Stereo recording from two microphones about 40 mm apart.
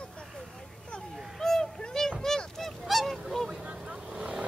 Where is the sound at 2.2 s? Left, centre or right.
Centre.